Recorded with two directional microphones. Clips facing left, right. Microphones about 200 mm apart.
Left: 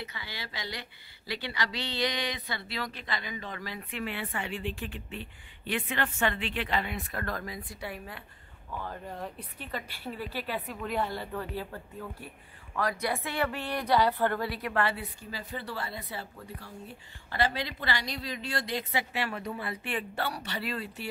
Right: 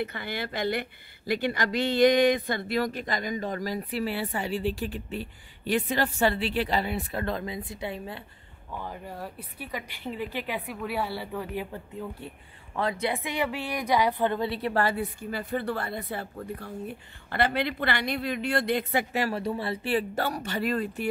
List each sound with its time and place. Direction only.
0.0 s a woman's voice: 55° right (ahead or behind); by 8.2 s 25° right (ahead or behind)
8.8 s a woman's voice: 5° right (ahead or behind); by 21.1 s 50° right (ahead or behind)